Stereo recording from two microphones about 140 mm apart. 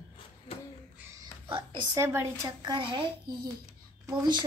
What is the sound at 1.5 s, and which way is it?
Speech, 35° right (ahead or behind).